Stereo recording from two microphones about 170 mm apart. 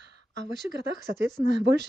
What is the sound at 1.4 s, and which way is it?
Speech, 85° right.